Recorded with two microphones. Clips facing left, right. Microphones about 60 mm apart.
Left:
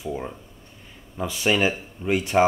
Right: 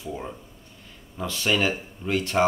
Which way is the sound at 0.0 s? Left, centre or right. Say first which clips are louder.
Left 3 dB; centre.